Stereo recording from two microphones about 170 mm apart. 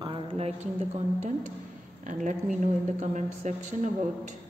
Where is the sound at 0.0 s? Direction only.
30° right (ahead or behind).